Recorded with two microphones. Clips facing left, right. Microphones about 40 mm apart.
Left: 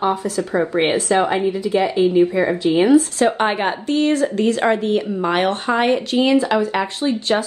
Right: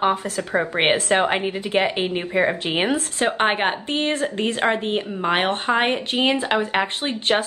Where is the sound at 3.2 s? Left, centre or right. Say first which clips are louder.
Left 3 dB; right.